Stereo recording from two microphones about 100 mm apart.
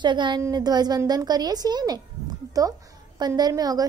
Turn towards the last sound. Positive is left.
turn(degrees=-40)  # may be behind; listen again after turning